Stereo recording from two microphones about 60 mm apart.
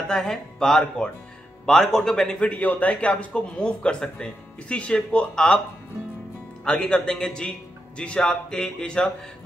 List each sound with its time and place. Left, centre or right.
0.1 s speech: centre
2.5 s speech: left
6.6 s speech: centre